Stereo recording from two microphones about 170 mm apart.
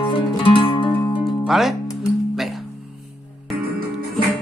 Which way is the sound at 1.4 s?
Centre (ahead or behind).